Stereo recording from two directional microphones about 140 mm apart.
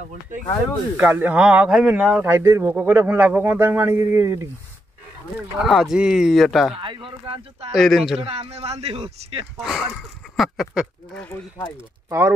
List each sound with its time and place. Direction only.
0.9 s speech: 10° right (ahead or behind)
5.6 s speech: centre (ahead or behind)
6.7 s speech: 40° right (ahead or behind)
7.7 s speech: centre (ahead or behind)
8.2 s speech: 45° right (ahead or behind)
9.6 s speech: centre (ahead or behind)
11.1 s speech: 15° left (ahead or behind)
11.7 s speech: 20° right (ahead or behind)